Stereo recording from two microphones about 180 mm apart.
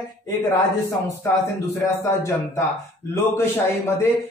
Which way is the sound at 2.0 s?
15° left (ahead or behind).